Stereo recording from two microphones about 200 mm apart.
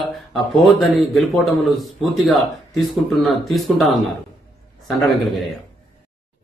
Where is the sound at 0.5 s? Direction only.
Centre (ahead or behind).